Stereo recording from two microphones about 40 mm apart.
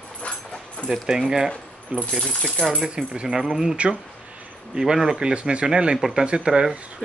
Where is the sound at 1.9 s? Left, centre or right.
Right.